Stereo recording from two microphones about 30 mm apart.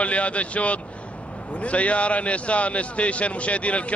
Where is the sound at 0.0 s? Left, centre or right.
Left.